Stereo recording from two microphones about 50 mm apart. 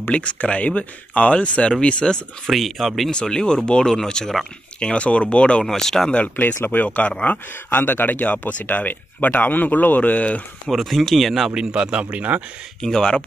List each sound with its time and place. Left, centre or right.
0.1 s speech: left
2.4 s speech: centre
3.1 s speech: centre
4.7 s speech: left
5.6 s speech: centre
6.1 s speech: left
6.4 s speech: left
7.2 s speech: left
10.7 s speech: centre
11.5 s speech: centre
12.8 s speech: centre